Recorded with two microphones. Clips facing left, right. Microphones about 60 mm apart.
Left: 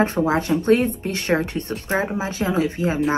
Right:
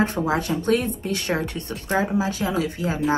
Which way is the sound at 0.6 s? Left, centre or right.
Left.